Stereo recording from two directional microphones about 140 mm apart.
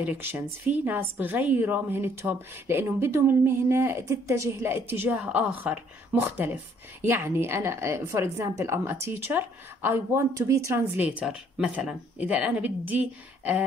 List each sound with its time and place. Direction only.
0.0 s a woman's voice: 15° right (ahead or behind)
11.0 s a woman's voice: 10° right (ahead or behind)